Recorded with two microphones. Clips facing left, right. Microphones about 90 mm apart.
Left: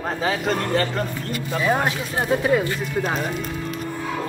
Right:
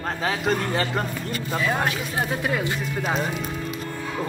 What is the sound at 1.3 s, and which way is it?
Speech, 20° left (ahead or behind).